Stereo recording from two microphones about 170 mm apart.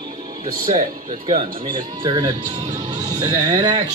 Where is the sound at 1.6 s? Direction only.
25° right (ahead or behind).